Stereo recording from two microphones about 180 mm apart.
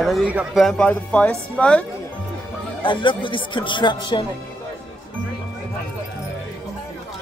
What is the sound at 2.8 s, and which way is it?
Speech, 30° left (ahead or behind).